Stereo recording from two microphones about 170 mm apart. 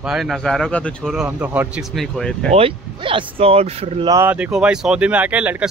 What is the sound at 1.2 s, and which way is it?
Speech, 10° right (ahead or behind).